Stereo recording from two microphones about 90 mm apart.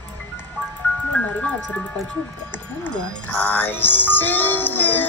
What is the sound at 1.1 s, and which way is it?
Speech, 15° left (ahead or behind).